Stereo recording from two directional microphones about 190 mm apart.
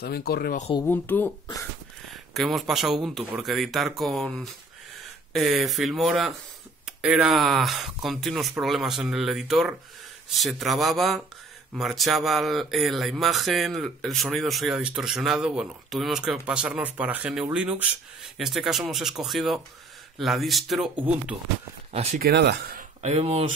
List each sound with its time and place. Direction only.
0.0 s speech: 55° left (ahead or behind)
0.8 s speech: 10° left (ahead or behind)
2.3 s speech: centre (ahead or behind)
22.2 s speech: 60° right (ahead or behind)
23.0 s speech: 35° right (ahead or behind)